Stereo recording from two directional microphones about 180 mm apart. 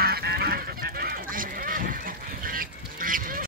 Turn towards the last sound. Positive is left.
turn(degrees=-50)  # may be behind; listen again after turning